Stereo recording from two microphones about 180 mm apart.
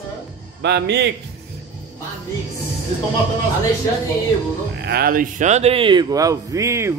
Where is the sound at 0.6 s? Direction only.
70° right (ahead or behind).